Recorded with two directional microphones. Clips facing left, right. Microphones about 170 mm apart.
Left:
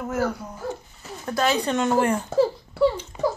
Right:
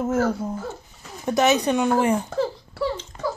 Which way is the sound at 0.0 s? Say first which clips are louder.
Right 4 dB; 25° right (ahead or behind).